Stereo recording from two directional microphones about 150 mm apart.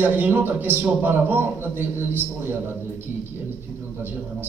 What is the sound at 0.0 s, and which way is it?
A man's voice, 10° right (ahead or behind).